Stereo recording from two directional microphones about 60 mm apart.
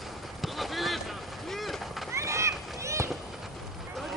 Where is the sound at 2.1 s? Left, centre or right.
Right.